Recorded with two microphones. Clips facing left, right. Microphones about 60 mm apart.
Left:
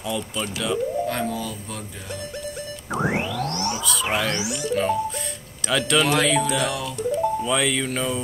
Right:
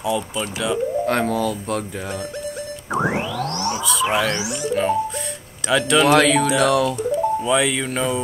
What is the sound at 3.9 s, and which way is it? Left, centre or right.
Speech, centre.